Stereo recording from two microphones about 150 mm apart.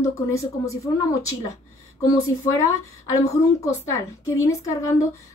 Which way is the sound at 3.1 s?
20° left (ahead or behind).